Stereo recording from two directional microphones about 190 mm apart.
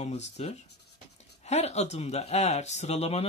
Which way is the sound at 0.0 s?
35° left (ahead or behind).